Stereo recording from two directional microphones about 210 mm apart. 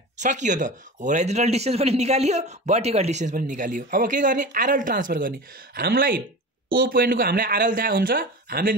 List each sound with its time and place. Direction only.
0.2 s a man's voice: 35° right (ahead or behind)